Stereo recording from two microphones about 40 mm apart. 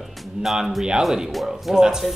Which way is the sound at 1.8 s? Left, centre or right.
Centre.